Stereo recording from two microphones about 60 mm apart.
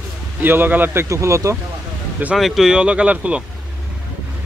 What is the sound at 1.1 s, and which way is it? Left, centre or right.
Speech, right.